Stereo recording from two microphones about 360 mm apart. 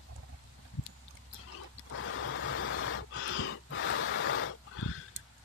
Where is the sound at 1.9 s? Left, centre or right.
Left.